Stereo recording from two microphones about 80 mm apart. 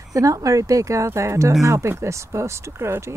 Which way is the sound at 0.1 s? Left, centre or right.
Right.